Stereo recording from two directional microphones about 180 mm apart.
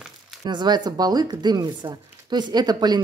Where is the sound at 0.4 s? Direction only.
25° right (ahead or behind).